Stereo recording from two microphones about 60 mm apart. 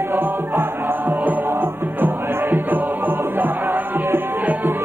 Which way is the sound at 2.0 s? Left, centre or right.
Right.